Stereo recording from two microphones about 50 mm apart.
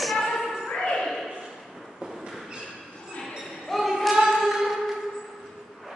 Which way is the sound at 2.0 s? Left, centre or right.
Centre.